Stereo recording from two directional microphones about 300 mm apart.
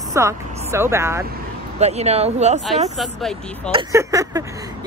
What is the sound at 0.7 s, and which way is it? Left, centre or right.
Speech, centre.